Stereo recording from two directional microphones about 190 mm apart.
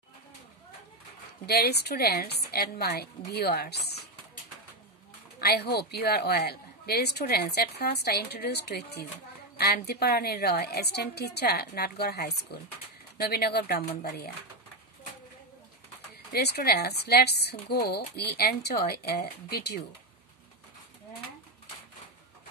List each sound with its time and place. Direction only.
1.4 s a woman's voice: 55° left (ahead or behind)
5.4 s a woman's voice: 55° left (ahead or behind)
16.3 s a woman's voice: 55° left (ahead or behind)